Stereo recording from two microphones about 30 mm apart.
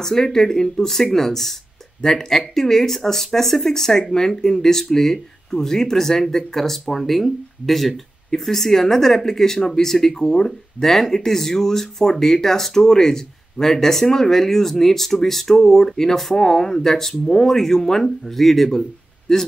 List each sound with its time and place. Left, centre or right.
0.0 s speech: centre
18.2 s a man's voice: centre